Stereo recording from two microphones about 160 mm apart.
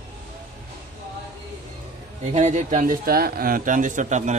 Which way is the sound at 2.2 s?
45° right (ahead or behind).